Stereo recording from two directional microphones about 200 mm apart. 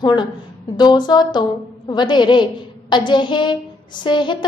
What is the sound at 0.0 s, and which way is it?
A woman's voice, 20° left (ahead or behind).